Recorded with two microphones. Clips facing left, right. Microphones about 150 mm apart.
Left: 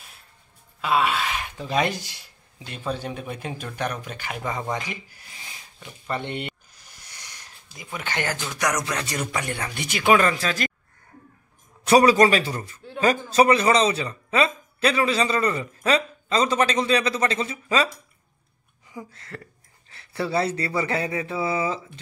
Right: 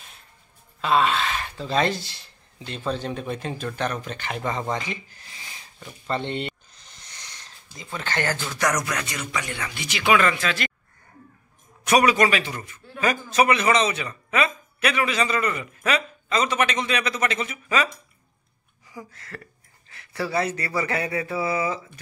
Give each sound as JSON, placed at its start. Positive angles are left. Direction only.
{"t": 0.7, "sound": "speech", "side_deg": 10}
{"t": 6.0, "sound": "a sound", "side_deg": 15}
{"t": 8.5, "sound": "speech", "side_deg": 20}
{"t": 9.0, "sound": "a man's voice", "side_deg": 45}
{"t": 11.8, "sound": "a man's voice", "side_deg": 30}
{"t": 18.9, "sound": "speech", "side_deg": 25}